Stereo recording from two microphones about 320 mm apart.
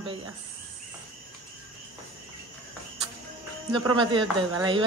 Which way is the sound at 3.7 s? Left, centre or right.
Centre.